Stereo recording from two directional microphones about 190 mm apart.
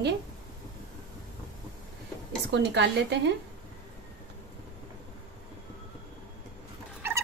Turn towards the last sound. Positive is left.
turn(degrees=-15)  # may be behind; listen again after turning